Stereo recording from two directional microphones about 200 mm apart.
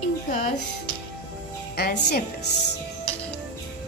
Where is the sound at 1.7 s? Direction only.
50° left (ahead or behind).